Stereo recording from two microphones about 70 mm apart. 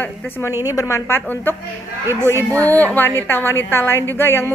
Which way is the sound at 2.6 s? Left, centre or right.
Left.